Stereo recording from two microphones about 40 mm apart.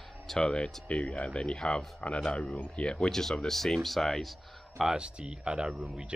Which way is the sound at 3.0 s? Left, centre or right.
Centre.